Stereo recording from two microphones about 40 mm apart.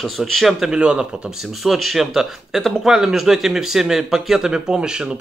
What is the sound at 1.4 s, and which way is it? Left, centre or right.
Speech, centre.